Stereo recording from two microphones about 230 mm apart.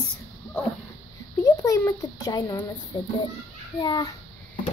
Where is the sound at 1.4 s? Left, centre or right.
Centre.